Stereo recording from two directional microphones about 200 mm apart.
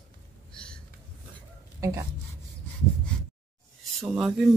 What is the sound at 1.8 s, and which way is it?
Speech, 15° right (ahead or behind).